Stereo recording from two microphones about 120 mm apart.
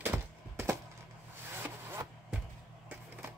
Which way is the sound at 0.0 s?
20° right (ahead or behind).